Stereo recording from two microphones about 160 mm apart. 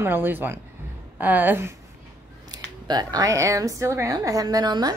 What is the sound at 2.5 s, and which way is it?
A woman's voice, 25° right (ahead or behind).